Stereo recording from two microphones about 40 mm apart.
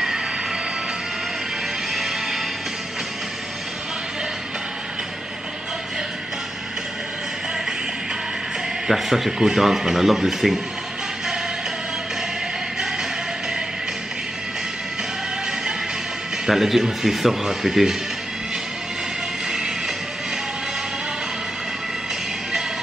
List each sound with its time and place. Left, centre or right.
2.0 s music: centre
8.8 s speech: centre
16.4 s speech: centre